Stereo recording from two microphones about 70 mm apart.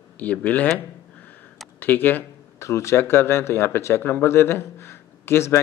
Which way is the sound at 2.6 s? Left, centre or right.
Left.